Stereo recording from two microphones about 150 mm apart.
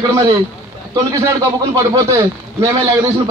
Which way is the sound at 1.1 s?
20° right (ahead or behind).